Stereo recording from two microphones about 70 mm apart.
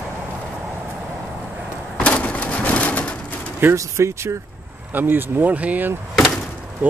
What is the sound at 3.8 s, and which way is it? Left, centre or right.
Speech, right.